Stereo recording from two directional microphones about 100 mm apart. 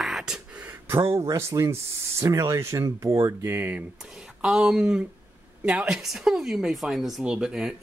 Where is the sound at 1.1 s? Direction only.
30° right (ahead or behind).